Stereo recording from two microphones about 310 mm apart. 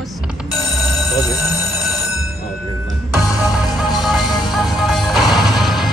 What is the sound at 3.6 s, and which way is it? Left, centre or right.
Music, centre.